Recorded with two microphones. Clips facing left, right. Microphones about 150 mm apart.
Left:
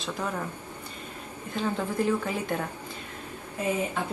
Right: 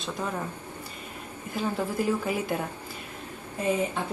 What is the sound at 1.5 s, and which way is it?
A woman's voice, 10° right (ahead or behind).